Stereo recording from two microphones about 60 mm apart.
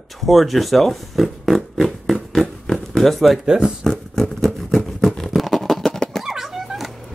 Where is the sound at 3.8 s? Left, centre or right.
Centre.